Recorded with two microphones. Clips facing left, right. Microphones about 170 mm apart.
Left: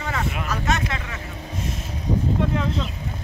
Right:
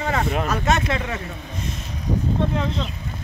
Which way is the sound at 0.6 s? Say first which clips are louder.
Right 1 dB; 25° right (ahead or behind).